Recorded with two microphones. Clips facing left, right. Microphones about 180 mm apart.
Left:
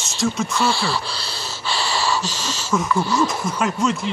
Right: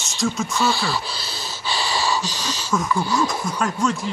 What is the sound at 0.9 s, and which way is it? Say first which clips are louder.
Speech: left 1 dB; 30° left (ahead or behind).